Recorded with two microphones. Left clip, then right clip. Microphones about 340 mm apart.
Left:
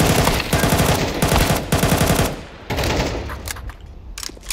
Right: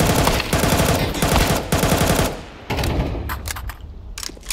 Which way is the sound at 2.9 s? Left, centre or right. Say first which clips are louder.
Left 5 dB; left.